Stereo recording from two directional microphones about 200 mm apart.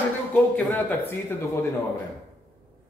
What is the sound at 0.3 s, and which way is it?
Speech, 10° left (ahead or behind).